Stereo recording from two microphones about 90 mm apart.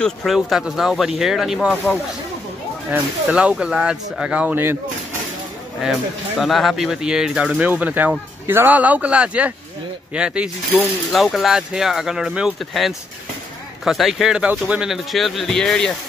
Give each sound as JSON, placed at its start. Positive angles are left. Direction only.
{"t": 0.0, "sound": "speech", "side_deg": 0}
{"t": 2.9, "sound": "speech", "side_deg": -15}
{"t": 5.8, "sound": "speech", "side_deg": -5}
{"t": 10.8, "sound": "speech", "side_deg": 0}